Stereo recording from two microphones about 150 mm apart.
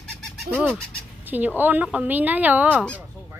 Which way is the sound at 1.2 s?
10° right (ahead or behind).